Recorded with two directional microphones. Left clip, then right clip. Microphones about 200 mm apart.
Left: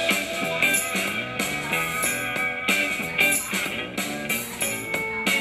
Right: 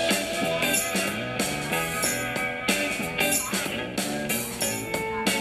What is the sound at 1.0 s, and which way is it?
Music, 30° right (ahead or behind).